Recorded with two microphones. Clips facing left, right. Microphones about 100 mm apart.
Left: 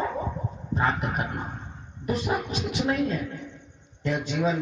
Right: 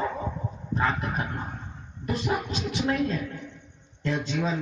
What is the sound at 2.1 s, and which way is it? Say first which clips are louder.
Speech: left 1 dB; 15° left (ahead or behind).